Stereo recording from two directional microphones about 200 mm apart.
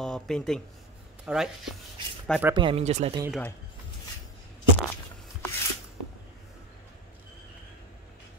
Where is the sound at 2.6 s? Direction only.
25° right (ahead or behind).